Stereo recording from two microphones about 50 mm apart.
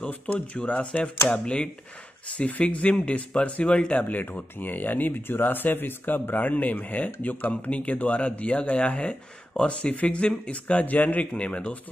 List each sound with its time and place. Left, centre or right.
0.0 s speech: left
1.3 s speech: centre